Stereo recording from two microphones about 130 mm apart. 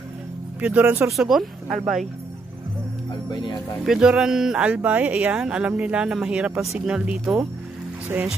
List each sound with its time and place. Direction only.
0.6 s speech: 10° right (ahead or behind)
3.3 s speech: 35° left (ahead or behind)
3.8 s speech: 5° right (ahead or behind)